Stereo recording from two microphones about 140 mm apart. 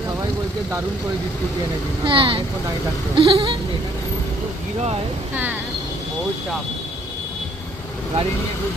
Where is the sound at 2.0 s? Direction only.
40° right (ahead or behind).